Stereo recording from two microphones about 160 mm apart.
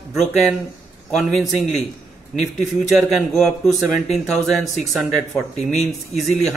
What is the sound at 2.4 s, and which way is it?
Speech, centre (ahead or behind).